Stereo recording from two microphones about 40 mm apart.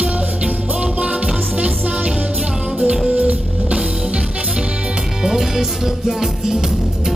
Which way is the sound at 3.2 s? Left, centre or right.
Right.